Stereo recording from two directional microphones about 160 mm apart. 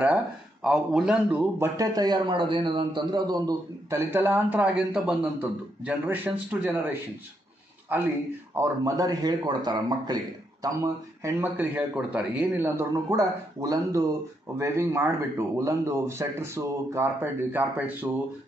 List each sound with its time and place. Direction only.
0.7 s a man's voice: 5° right (ahead or behind)
1.8 s a man's voice: 25° right (ahead or behind)